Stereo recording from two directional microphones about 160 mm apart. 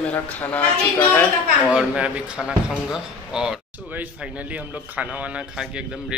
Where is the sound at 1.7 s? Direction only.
5° right (ahead or behind).